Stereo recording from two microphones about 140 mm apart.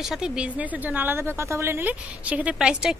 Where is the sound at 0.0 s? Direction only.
5° right (ahead or behind).